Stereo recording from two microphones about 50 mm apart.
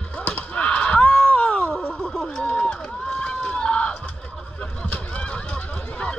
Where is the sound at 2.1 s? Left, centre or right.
Centre.